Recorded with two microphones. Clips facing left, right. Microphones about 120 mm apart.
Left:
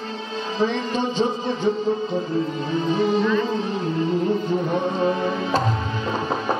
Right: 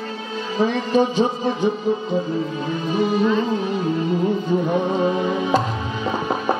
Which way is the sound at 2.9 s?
10° right (ahead or behind).